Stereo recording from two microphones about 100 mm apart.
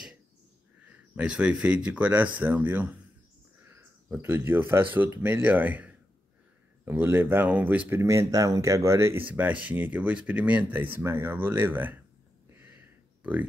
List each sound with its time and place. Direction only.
1.1 s a man's voice: 10° right (ahead or behind)
8.0 s speech: 30° right (ahead or behind)
9.3 s speech: 15° right (ahead or behind)
12.6 s a sound: 20° right (ahead or behind)